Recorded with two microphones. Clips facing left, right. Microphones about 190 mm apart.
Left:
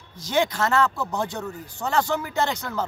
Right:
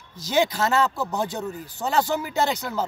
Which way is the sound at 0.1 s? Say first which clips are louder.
Right 1 dB; 5° right (ahead or behind).